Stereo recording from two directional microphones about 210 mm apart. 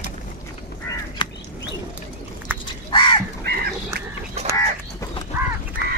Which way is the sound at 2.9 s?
25° left (ahead or behind).